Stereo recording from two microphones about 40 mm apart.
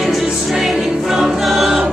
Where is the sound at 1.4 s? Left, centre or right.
Centre.